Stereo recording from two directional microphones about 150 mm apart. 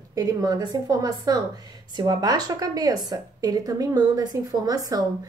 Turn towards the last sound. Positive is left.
turn(degrees=-25)  # may be behind; listen again after turning